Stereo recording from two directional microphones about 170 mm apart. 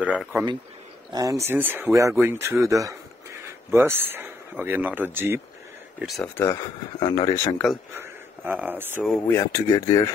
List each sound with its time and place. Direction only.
0.0 s speech: 5° right (ahead or behind)
1.1 s speech: 20° right (ahead or behind)
5.9 s speech: centre (ahead or behind)
6.2 s speech: 15° left (ahead or behind)
7.5 s speech: centre (ahead or behind)
8.0 s speech: 10° right (ahead or behind)
9.3 s speech: 20° left (ahead or behind)